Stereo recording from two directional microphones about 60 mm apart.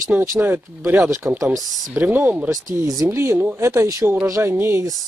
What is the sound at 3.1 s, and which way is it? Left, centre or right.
Speech, right.